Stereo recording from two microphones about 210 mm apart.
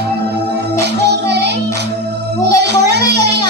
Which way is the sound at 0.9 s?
55° right (ahead or behind).